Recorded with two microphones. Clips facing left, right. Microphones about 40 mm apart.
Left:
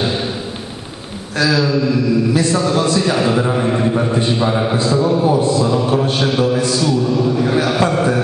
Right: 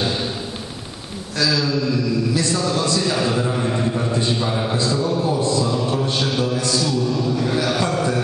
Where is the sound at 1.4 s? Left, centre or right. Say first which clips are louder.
Left 5 dB; left.